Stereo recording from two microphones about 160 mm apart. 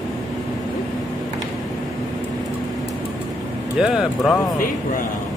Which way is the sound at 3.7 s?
5° right (ahead or behind).